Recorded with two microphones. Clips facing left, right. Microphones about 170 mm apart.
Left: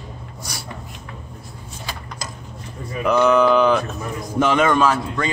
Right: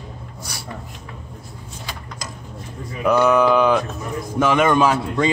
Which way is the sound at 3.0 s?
10° right (ahead or behind).